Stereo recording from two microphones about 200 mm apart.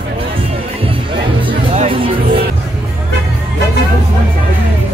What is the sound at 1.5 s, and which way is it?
Music, 25° right (ahead or behind).